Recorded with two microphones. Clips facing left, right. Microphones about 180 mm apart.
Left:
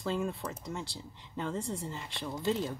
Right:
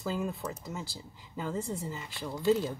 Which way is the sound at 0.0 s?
5° right (ahead or behind).